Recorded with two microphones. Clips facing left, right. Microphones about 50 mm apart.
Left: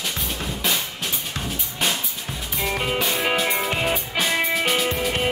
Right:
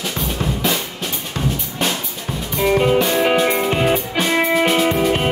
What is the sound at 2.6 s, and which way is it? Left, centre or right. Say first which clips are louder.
Music: right 9 dB; centre.